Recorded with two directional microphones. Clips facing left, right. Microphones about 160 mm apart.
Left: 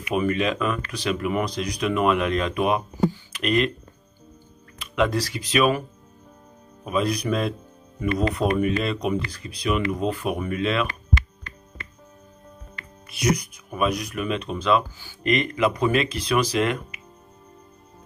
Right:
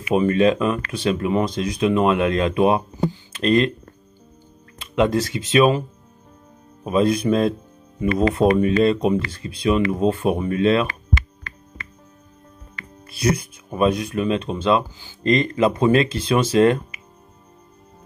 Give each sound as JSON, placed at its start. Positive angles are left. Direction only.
{"t": 0.1, "sound": "speech", "side_deg": -30}
{"t": 4.9, "sound": "speech", "side_deg": -25}
{"t": 13.0, "sound": "speech", "side_deg": -30}